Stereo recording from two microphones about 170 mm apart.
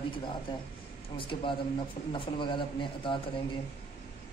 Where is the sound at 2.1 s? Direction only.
30° left (ahead or behind).